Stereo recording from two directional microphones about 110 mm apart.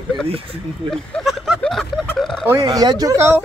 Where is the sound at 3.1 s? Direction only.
25° right (ahead or behind).